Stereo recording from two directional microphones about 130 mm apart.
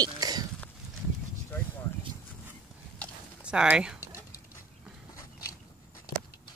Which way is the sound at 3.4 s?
10° right (ahead or behind).